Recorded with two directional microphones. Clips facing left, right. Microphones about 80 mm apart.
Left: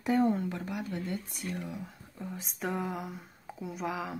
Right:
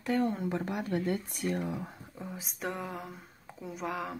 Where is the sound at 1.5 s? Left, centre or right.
Right.